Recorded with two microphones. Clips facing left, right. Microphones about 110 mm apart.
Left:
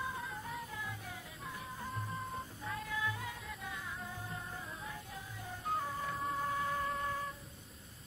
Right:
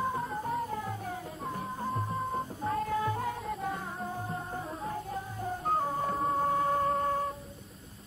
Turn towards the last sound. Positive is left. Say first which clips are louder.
# right 9 dB
turn(degrees=-45)  # may be behind; listen again after turning